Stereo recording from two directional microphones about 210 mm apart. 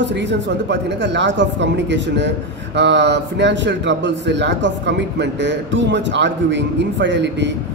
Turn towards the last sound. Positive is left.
turn(degrees=-55)  # may be behind; listen again after turning